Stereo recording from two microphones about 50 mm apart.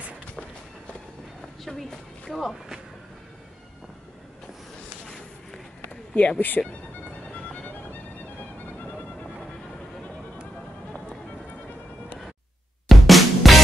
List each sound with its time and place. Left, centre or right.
1.6 s a woman's voice: centre
6.1 s speech: left
7.3 s music: left
12.8 s drum: centre